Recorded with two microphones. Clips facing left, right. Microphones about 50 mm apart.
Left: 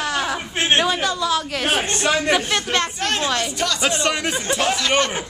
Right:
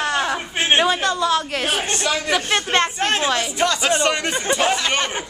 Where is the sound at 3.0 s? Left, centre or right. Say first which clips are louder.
Right 2 dB; right.